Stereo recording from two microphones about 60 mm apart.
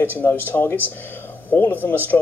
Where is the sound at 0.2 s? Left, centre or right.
Left.